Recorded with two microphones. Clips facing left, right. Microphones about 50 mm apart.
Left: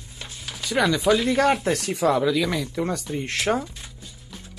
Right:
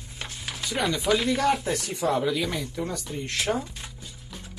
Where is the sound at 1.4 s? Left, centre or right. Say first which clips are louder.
Left 4 dB; left.